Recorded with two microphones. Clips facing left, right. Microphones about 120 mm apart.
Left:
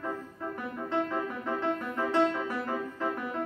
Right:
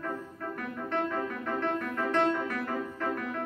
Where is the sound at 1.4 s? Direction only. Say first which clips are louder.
Even; 15° left (ahead or behind).